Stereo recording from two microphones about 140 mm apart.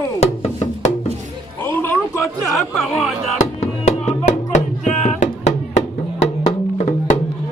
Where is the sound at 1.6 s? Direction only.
15° left (ahead or behind).